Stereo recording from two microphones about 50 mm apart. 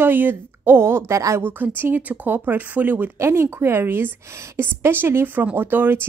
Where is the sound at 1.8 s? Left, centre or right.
Right.